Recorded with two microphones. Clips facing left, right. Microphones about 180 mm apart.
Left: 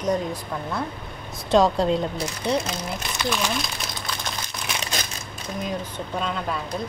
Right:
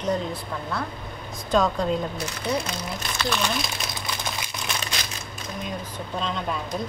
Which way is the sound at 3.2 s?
10° left (ahead or behind).